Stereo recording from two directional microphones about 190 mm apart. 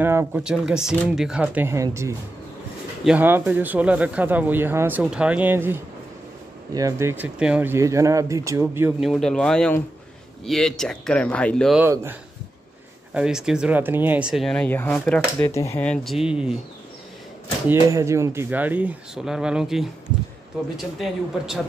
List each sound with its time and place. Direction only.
0.0 s speech: 10° right (ahead or behind)
9.0 s speech: centre (ahead or behind)
11.8 s speech: 10° right (ahead or behind)
17.6 s speech: 15° right (ahead or behind); by 21.5 s centre (ahead or behind)